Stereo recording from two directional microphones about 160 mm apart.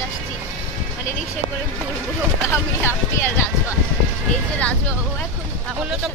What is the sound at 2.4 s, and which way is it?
Speech, 15° left (ahead or behind).